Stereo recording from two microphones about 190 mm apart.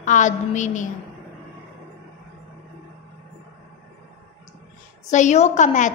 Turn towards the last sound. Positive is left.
turn(degrees=40)  # may be behind; listen again after turning